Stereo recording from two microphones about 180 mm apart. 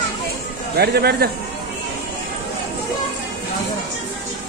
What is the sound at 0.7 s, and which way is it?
Speech, 60° right (ahead or behind).